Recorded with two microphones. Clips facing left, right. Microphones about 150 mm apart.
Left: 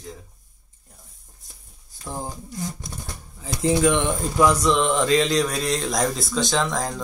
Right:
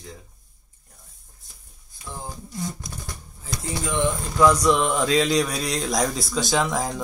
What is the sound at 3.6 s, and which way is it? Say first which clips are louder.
Speech: left 8 dB; 90° left.